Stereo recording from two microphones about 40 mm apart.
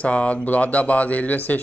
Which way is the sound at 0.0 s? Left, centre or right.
Left.